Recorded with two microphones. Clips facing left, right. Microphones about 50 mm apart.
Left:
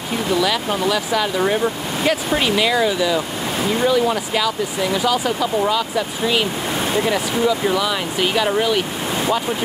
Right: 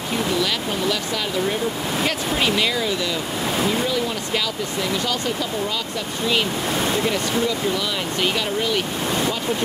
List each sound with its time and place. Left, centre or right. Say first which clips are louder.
0.3 s speech: left 7 dB; centre